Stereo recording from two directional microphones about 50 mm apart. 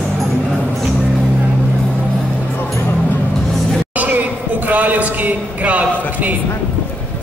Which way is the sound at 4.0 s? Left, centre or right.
Right.